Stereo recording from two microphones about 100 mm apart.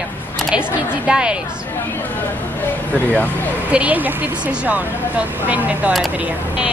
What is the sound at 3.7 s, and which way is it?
Speech, 15° right (ahead or behind).